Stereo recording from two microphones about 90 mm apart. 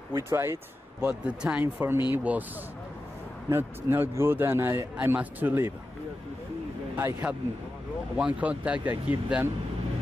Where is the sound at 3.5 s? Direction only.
25° right (ahead or behind).